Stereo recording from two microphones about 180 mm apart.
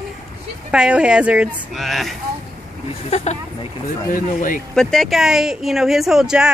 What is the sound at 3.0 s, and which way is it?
Speech, 35° left (ahead or behind).